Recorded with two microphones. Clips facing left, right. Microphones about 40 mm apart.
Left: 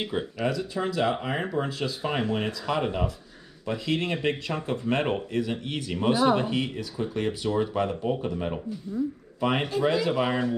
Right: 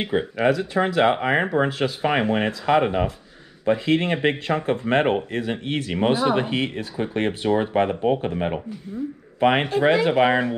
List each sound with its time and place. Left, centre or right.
0.0 s speech: right